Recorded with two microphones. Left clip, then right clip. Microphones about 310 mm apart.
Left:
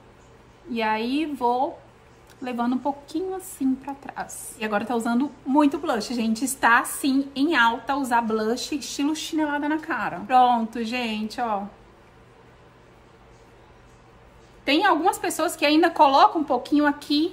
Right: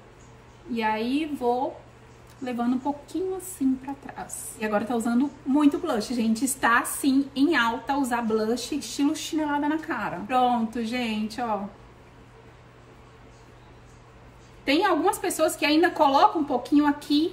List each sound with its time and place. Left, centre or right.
0.7 s speech: centre
14.6 s speech: centre